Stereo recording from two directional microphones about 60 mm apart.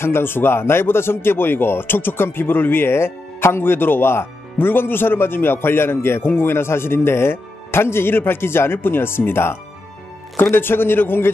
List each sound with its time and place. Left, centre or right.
0.0 s speech: left